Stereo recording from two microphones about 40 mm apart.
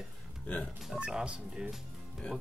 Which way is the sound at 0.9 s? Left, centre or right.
Right.